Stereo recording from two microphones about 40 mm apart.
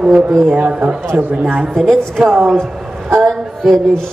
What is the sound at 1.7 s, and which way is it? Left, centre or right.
Speech, centre.